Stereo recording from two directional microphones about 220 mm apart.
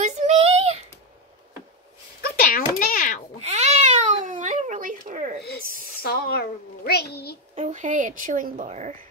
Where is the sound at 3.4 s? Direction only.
30° right (ahead or behind).